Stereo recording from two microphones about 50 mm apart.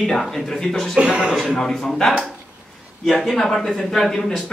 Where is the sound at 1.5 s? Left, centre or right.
Centre.